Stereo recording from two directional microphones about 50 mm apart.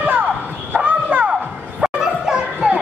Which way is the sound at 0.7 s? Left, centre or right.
Right.